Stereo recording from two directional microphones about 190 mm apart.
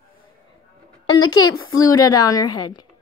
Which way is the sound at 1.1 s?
90° left.